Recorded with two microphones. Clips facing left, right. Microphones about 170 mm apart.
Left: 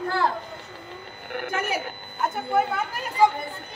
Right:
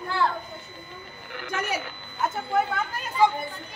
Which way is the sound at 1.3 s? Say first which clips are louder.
Left 3 dB; 55° left (ahead or behind).